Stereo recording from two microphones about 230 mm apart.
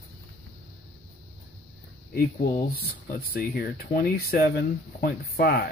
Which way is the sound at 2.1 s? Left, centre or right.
Left.